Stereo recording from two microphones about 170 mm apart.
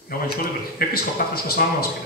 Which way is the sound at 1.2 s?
70° left (ahead or behind).